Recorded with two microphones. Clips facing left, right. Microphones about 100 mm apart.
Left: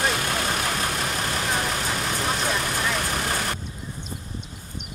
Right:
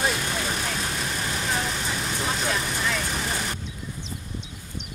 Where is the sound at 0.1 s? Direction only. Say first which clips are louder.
Left 2 dB; 60° left (ahead or behind).